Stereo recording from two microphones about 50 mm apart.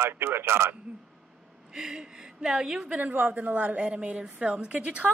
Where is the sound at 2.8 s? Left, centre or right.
Right.